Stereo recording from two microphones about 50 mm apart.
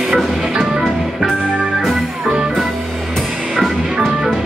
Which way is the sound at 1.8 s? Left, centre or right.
Centre.